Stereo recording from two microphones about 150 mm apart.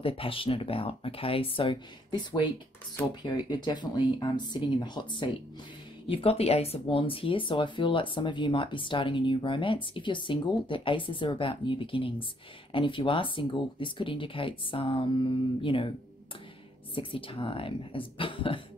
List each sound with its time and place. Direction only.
0.0 s speech: 35° left (ahead or behind)
6.0 s speech: 40° left (ahead or behind)
16.9 s speech: 35° left (ahead or behind)